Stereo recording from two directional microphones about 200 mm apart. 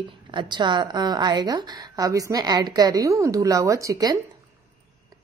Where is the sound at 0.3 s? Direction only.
25° right (ahead or behind).